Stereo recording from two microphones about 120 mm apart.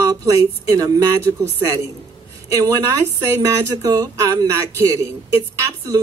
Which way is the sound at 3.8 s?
30° right (ahead or behind).